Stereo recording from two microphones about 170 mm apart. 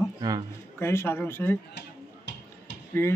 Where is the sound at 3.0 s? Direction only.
15° left (ahead or behind).